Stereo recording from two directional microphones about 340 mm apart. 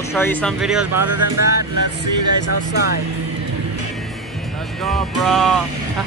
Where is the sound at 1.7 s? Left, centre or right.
Right.